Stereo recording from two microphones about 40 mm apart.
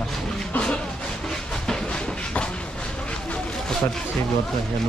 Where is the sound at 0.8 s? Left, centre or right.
Centre.